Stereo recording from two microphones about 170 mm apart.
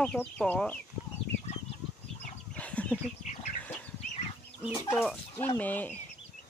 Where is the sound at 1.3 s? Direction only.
75° left (ahead or behind).